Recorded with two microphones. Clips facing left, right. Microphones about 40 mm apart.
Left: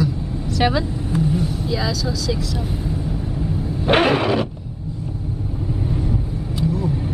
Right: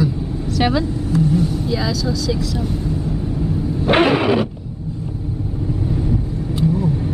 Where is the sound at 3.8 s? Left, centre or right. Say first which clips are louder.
Right 2 dB; centre.